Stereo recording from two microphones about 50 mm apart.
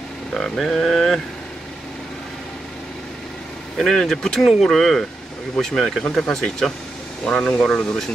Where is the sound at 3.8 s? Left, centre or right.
Centre.